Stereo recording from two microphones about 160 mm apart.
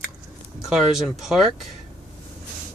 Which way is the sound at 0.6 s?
Centre (ahead or behind).